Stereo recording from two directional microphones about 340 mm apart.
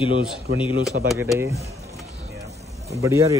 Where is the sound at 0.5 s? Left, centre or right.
Centre.